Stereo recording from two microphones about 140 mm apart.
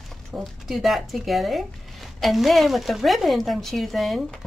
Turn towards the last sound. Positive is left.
turn(degrees=0)  # may be behind; listen again after turning